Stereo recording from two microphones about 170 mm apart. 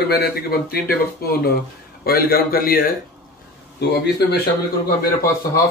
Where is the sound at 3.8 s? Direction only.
80° left.